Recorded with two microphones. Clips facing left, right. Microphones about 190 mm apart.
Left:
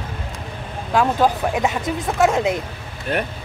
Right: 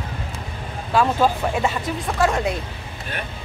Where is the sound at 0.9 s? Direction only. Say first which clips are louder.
Left 1 dB; 15° left (ahead or behind).